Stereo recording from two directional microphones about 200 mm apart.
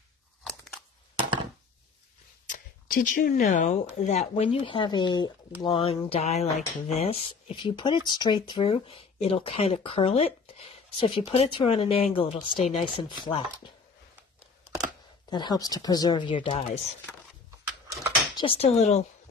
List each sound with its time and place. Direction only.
2.4 s arrow: 40° left (ahead or behind)
3.6 s speech: 35° left (ahead or behind)
15.2 s speech: 20° left (ahead or behind)
18.3 s speech: 25° left (ahead or behind)